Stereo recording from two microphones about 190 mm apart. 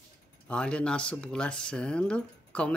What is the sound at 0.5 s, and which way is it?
A woman's voice, 5° left (ahead or behind).